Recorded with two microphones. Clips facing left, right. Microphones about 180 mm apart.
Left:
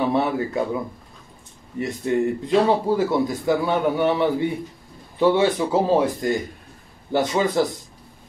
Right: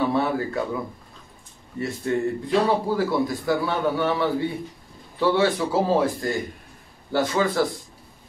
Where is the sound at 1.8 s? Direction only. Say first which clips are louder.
Left 3 dB; 20° left (ahead or behind).